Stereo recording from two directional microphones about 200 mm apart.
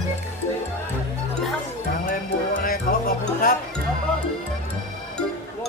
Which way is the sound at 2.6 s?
45° left (ahead or behind).